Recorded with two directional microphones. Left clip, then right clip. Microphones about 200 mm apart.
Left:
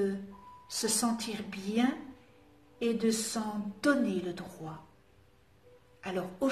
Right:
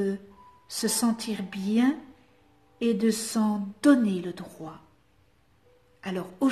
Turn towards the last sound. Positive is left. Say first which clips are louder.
# right 3 dB
turn(degrees=-45)  # may be behind; listen again after turning